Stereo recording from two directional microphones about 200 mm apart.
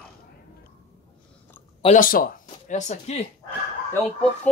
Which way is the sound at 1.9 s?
45° left (ahead or behind).